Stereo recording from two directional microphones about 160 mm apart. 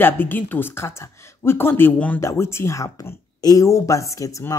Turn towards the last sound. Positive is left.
turn(degrees=20)  # may be behind; listen again after turning